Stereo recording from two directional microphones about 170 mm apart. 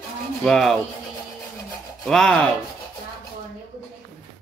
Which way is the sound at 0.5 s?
Centre (ahead or behind).